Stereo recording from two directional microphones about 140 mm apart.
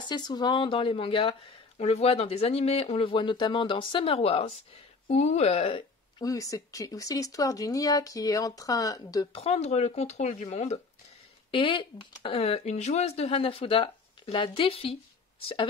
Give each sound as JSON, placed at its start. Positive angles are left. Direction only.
{"t": 0.1, "sound": "speech", "side_deg": 30}
{"t": 6.2, "sound": "speech", "side_deg": 25}
{"t": 9.3, "sound": "speech", "side_deg": 45}
{"t": 11.5, "sound": "speech", "side_deg": 35}